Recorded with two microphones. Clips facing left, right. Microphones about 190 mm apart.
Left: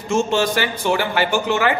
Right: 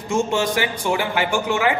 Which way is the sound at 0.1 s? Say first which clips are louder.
Left 2 dB; 15° right (ahead or behind).